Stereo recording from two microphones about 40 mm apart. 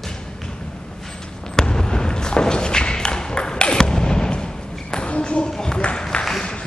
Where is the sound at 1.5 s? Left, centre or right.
Centre.